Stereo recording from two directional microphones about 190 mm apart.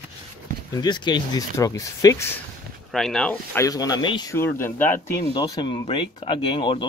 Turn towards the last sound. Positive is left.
turn(degrees=25)  # may be behind; listen again after turning